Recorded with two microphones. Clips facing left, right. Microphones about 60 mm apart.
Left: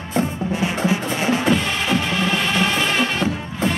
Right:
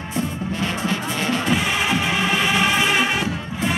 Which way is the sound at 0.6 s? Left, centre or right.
Centre.